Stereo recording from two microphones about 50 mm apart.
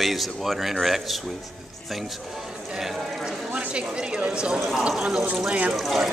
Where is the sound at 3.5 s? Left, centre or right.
Right.